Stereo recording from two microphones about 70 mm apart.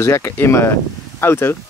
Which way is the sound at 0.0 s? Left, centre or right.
Left.